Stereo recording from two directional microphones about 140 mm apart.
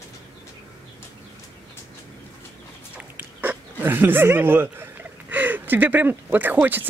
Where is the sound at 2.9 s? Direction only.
10° right (ahead or behind).